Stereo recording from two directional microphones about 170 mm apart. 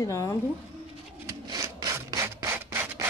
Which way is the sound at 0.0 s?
20° left (ahead or behind).